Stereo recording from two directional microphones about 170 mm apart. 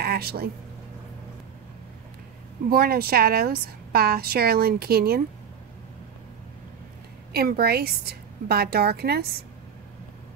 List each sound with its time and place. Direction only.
0.0 s a sound: 65° right (ahead or behind)
2.7 s a woman's voice: 65° right (ahead or behind)
7.3 s a woman's voice: 65° right (ahead or behind)